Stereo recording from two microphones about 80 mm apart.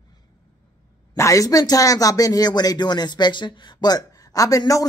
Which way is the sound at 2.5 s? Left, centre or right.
Left.